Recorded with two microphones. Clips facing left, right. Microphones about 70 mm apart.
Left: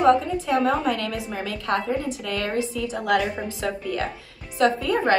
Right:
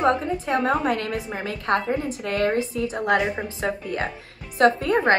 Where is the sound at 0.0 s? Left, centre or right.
Right.